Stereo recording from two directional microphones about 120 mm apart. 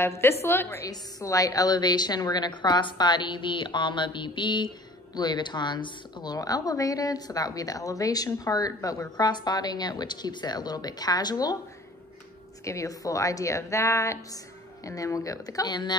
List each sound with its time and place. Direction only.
0.0 s a woman's voice: 20° left (ahead or behind)
12.6 s a woman's voice: 25° left (ahead or behind)